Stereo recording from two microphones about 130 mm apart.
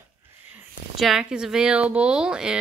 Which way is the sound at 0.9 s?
Centre (ahead or behind).